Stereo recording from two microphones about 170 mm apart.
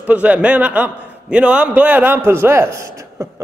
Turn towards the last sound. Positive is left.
turn(degrees=-15)  # may be behind; listen again after turning